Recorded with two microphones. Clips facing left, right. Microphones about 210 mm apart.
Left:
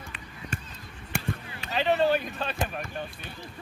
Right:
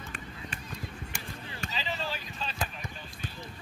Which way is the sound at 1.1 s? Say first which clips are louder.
Left 10 dB; 60° left (ahead or behind).